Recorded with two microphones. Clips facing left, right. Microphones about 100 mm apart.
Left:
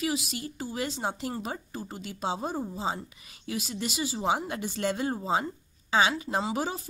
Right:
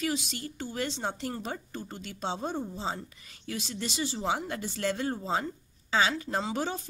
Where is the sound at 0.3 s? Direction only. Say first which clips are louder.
Left 2 dB; 10° left (ahead or behind).